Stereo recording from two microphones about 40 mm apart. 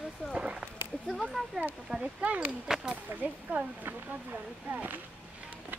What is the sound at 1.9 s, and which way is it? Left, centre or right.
Speech, right.